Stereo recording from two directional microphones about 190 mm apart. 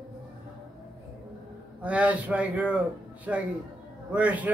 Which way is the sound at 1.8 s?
5° right (ahead or behind).